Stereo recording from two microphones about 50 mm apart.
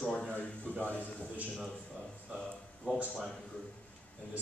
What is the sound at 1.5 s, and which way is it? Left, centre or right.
Speech, centre.